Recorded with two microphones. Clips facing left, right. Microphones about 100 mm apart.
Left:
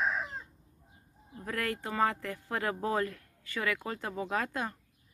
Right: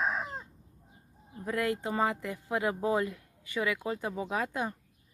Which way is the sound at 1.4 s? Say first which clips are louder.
Right 4 dB; 20° right (ahead or behind).